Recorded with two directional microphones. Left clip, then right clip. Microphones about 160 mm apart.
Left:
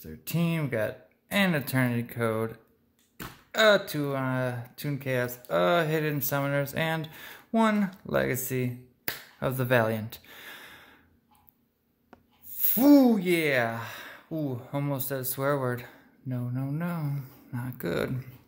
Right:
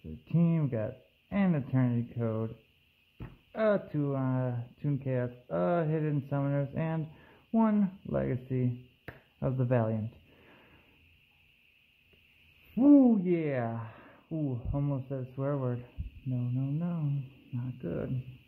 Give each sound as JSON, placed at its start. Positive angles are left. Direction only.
{"t": 0.2, "sound": "speech", "side_deg": 0}
{"t": 3.5, "sound": "speech", "side_deg": 0}
{"t": 10.4, "sound": "gasp", "side_deg": 15}
{"t": 13.2, "sound": "speech", "side_deg": 5}
{"t": 13.7, "sound": "gasp", "side_deg": 10}
{"t": 14.3, "sound": "speech", "side_deg": 20}